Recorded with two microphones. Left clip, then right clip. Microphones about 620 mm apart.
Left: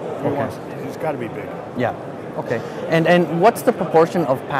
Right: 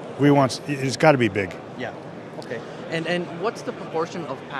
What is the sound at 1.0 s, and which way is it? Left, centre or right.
Speech, right.